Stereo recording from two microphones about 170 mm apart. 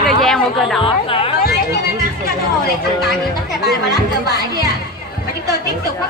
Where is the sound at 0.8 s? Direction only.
30° left (ahead or behind).